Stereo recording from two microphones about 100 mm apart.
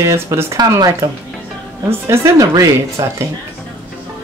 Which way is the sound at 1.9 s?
25° right (ahead or behind).